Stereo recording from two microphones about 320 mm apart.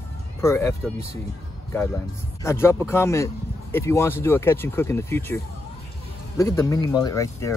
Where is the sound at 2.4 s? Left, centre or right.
Centre.